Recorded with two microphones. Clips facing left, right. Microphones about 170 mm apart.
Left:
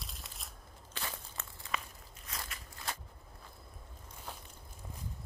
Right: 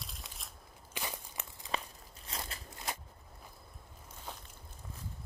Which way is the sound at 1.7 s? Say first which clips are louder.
Right 2 dB; 30° right (ahead or behind).